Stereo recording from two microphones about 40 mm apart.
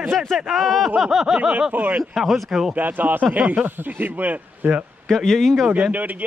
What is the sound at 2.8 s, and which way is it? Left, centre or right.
Speech, right.